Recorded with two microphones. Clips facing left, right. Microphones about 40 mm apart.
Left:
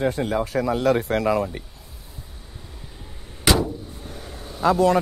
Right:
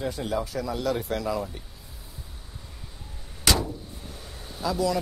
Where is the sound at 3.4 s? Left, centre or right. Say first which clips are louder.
Left 5 dB; centre.